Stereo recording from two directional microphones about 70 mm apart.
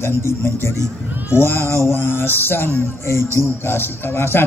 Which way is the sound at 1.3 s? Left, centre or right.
Left.